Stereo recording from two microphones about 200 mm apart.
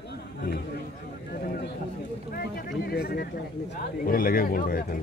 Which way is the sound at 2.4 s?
50° left (ahead or behind).